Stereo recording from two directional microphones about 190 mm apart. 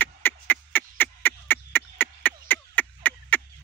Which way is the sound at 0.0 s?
10° left (ahead or behind).